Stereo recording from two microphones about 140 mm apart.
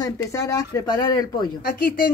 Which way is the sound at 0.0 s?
20° left (ahead or behind).